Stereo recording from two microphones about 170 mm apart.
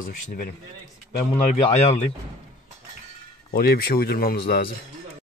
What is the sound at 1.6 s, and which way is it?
Speech, 35° left (ahead or behind).